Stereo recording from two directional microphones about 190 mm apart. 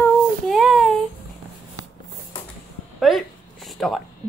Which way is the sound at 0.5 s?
Centre (ahead or behind).